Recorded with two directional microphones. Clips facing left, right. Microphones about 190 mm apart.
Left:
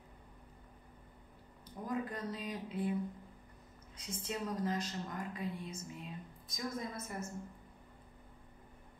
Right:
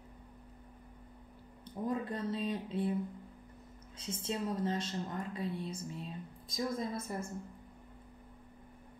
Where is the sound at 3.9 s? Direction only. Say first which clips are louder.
Right 3 dB; 30° right (ahead or behind).